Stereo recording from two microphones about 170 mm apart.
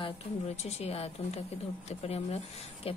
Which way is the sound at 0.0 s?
40° left (ahead or behind).